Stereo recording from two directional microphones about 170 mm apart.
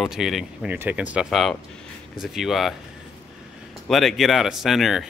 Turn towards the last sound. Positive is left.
turn(degrees=0)  # may be behind; listen again after turning